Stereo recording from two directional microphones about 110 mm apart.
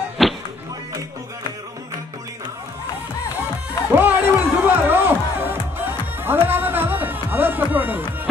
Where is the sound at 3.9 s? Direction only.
15° right (ahead or behind).